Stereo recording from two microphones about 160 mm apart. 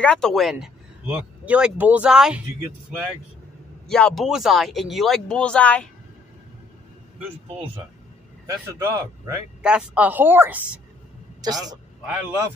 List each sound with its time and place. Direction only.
0.0 s speech: 5° left (ahead or behind)
3.8 s speech: 5° left (ahead or behind)
8.5 s a man's voice: 20° right (ahead or behind)
9.6 s speech: 5° right (ahead or behind)
11.4 s a man's voice: 25° right (ahead or behind)